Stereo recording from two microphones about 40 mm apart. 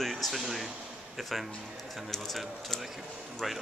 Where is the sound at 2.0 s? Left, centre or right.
Centre.